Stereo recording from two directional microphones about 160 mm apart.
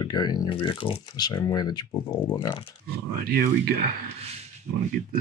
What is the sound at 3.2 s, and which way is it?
Speech, 80° right.